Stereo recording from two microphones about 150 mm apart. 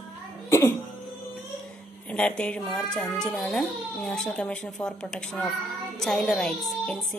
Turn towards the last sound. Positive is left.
turn(degrees=5)  # may be behind; listen again after turning